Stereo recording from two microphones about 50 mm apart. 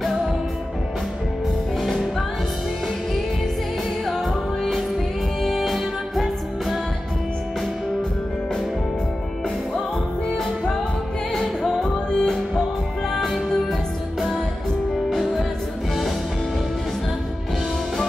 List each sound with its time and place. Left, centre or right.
1.8 s music: centre
4.0 s music: centre
10.3 s music: centre
11.4 s music: centre
12.1 s music: centre
13.1 s music: centre
15.0 s music: centre